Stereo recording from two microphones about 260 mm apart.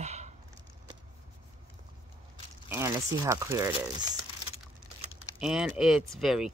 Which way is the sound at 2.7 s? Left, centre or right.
Centre.